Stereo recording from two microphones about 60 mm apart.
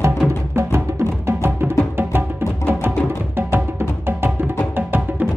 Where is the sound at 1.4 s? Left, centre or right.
Right.